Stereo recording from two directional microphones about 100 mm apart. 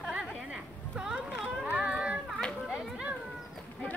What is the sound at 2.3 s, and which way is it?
Children playing, centre (ahead or behind).